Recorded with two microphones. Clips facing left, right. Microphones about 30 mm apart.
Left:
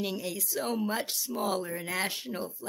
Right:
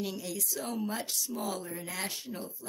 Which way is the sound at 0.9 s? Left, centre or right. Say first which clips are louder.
Left 3 dB; left.